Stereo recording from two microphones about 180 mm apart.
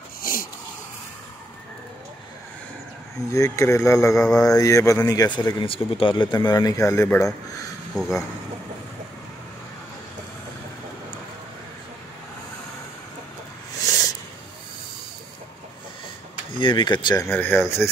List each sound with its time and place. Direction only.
0.2 s a sound: 50° left (ahead or behind)
3.3 s speech: 15° left (ahead or behind)
16.5 s speech: 25° left (ahead or behind)
17.3 s speech: 10° left (ahead or behind)